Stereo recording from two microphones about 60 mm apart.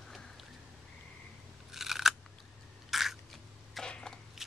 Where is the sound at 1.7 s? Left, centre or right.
Centre.